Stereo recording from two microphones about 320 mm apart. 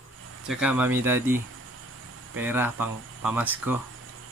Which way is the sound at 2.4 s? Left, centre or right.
Centre.